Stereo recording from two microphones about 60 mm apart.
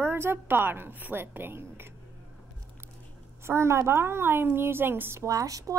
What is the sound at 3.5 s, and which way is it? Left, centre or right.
A woman's voice, right.